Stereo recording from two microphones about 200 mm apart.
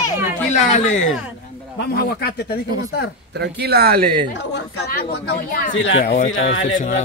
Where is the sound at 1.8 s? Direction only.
55° left (ahead or behind).